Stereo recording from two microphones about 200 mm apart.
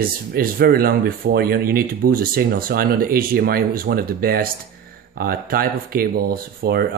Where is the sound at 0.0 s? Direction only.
50° right (ahead or behind).